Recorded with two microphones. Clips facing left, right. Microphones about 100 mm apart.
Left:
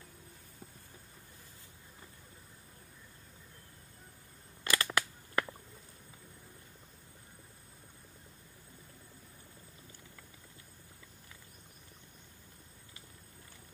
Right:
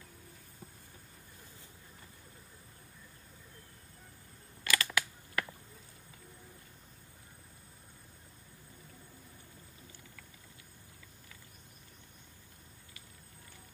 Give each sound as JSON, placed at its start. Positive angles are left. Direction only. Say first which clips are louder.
{"t": 4.6, "sound": "scissors", "louder": "left 1 dB", "side_deg": 30}